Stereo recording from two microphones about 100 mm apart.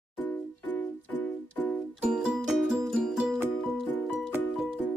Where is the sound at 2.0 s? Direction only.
10° right (ahead or behind).